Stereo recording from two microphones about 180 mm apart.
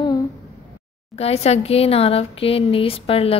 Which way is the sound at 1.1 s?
35° left (ahead or behind).